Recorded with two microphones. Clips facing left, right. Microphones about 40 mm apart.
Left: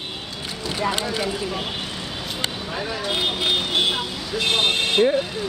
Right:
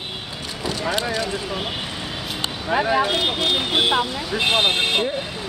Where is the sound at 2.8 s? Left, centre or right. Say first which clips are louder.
Right 9 dB; right.